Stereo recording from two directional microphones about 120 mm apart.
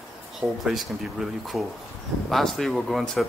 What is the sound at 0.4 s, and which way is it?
Speech, 5° right (ahead or behind).